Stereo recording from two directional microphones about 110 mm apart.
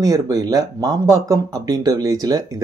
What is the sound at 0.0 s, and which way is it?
Speech, 35° right (ahead or behind).